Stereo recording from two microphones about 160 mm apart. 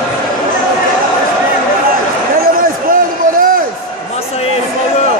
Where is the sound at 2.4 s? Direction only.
60° right (ahead or behind).